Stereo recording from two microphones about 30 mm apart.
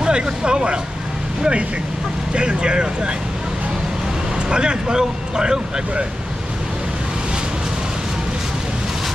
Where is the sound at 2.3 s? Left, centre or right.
Right.